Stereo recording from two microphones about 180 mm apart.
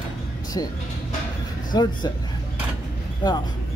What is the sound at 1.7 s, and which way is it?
Speech, 25° left (ahead or behind).